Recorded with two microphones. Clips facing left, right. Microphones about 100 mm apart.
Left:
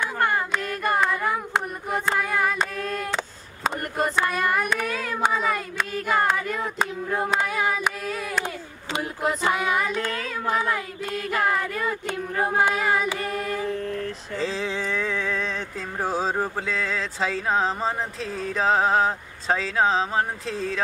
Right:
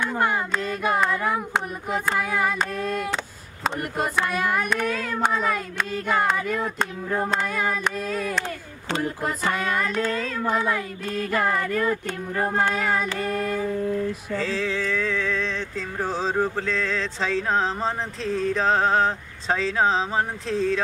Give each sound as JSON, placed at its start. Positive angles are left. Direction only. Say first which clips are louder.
{"t": 0.2, "sound": "carnatic music", "louder": "left 1 dB", "side_deg": -5}
{"t": 0.6, "sound": "a sound", "louder": "right 2 dB", "side_deg": 0}
{"t": 3.6, "sound": "a child's voice", "louder": "left 1 dB", "side_deg": 0}
{"t": 8.9, "sound": "child singing", "louder": "even", "side_deg": 15}
{"t": 13.7, "sound": "mantra", "louder": "right 3 dB", "side_deg": -10}
{"t": 14.3, "sound": "a sound", "louder": "even", "side_deg": 20}
{"t": 16.0, "sound": "a child's voice", "louder": "right 1 dB", "side_deg": 10}